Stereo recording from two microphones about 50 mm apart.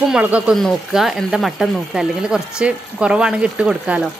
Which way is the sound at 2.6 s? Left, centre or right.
Right.